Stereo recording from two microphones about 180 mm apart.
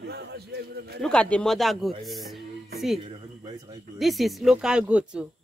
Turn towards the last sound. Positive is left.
turn(degrees=-5)  # may be behind; listen again after turning